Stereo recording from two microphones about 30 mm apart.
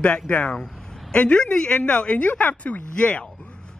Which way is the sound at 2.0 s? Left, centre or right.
Left.